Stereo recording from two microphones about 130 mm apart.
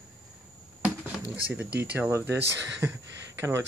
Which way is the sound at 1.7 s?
15° right (ahead or behind).